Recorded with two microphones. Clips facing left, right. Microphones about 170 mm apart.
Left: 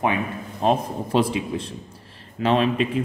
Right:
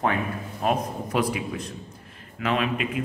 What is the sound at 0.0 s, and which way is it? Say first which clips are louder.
A man's voice: left 2 dB; 20° left (ahead or behind).